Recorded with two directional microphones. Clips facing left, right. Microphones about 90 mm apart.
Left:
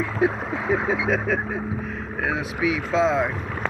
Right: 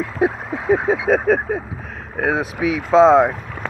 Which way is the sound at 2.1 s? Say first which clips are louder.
Right 7 dB; 35° right (ahead or behind).